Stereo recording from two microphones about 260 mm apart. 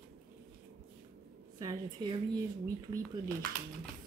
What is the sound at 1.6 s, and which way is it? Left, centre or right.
Speech, centre.